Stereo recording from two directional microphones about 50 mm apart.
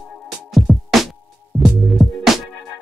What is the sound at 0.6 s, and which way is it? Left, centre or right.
Music, centre.